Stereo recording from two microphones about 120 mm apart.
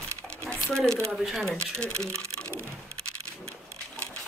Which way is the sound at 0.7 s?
5° left (ahead or behind).